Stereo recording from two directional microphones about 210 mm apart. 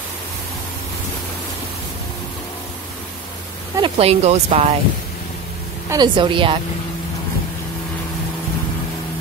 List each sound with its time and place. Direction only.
3.7 s speech: 25° right (ahead or behind)
5.9 s speech: 20° right (ahead or behind)